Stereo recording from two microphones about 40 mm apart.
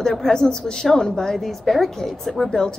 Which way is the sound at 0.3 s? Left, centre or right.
Centre.